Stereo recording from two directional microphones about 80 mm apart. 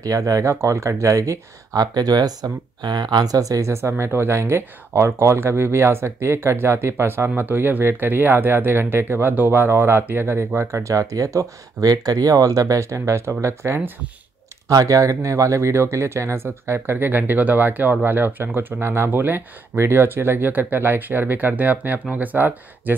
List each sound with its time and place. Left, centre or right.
0.0 s speech: right
14.7 s speech: right